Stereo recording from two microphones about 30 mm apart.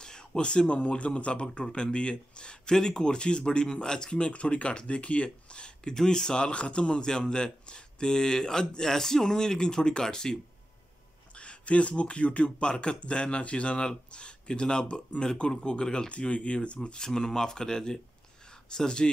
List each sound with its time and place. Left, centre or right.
0.0 s a sound: left
0.4 s speech: left
2.7 s speech: centre; by 5.9 s left
5.9 s a man's voice: left
11.3 s a sound: left
12.0 s a man's voice: left
16.1 s a man's voice: left